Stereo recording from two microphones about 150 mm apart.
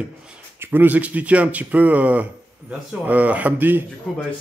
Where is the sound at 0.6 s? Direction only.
15° right (ahead or behind).